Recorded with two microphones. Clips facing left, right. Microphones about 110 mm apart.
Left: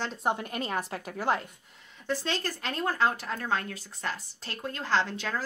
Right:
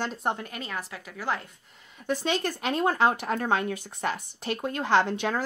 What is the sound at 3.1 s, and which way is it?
Speech, 60° right (ahead or behind).